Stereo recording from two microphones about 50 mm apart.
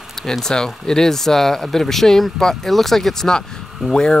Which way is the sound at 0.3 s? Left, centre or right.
Centre.